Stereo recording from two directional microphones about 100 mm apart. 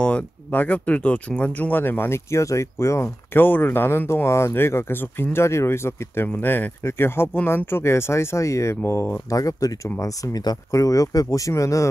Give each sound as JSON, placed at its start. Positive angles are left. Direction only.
{"t": 0.0, "sound": "speech", "side_deg": 15}